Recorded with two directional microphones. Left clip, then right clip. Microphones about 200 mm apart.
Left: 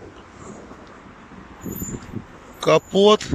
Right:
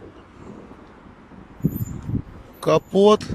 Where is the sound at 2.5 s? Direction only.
20° right (ahead or behind).